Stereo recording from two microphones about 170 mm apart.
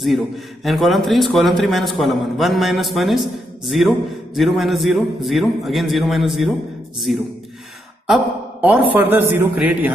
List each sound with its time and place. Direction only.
0.7 s a man's voice: centre (ahead or behind)